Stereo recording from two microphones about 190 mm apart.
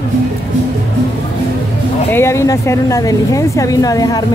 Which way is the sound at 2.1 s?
15° left (ahead or behind).